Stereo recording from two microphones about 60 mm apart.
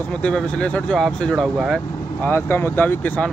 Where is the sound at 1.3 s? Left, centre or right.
Centre.